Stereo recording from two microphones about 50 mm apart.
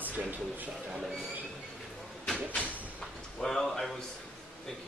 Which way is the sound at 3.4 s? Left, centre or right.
Centre.